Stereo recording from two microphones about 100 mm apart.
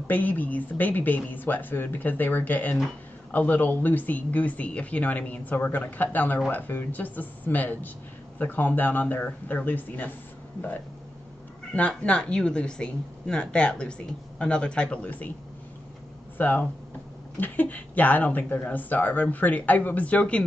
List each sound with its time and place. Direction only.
0.1 s speech: 15° left (ahead or behind)
11.7 s speech: 10° left (ahead or behind)
16.3 s speech: 20° left (ahead or behind)